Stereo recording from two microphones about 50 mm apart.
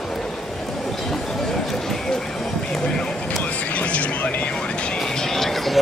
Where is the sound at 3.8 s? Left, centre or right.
Left.